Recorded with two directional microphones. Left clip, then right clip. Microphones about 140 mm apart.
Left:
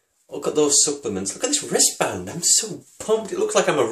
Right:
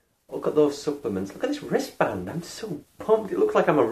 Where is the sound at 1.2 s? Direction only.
5° left (ahead or behind).